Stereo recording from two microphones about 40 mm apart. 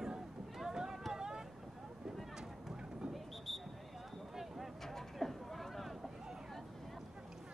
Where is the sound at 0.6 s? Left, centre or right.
Centre.